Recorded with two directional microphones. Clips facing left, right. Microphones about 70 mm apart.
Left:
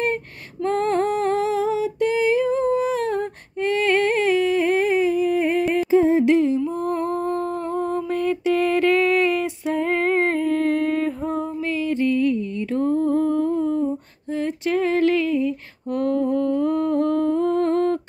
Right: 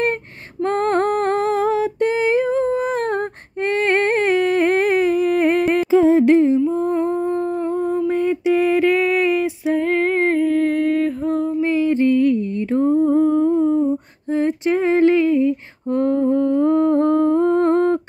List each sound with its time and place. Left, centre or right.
0.7 s humming: right
2.9 s a sound: right
6.2 s humming: right
6.7 s a sound: right
8.1 s music: right; by 11.5 s centre
11.6 s music: right
12.8 s humming: centre